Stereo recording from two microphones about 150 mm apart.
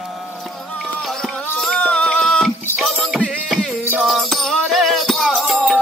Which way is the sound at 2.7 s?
Centre (ahead or behind).